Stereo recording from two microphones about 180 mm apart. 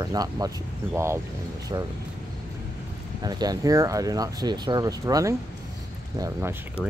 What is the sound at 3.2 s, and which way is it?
Speech, 20° right (ahead or behind).